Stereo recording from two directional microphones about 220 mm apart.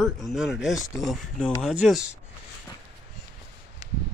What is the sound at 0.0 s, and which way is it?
Speech, centre (ahead or behind).